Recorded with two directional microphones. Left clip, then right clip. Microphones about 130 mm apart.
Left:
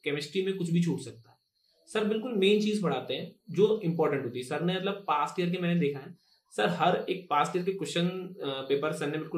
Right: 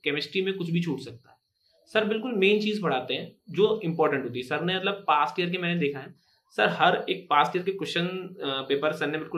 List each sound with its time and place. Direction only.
0.0 s speech: 25° left (ahead or behind)